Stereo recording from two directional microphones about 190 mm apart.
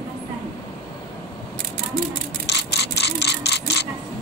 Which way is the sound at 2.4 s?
65° left (ahead or behind).